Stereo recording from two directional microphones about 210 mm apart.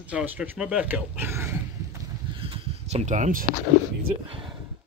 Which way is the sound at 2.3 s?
25° right (ahead or behind).